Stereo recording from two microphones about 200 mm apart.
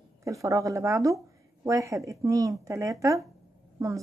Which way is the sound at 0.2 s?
15° right (ahead or behind).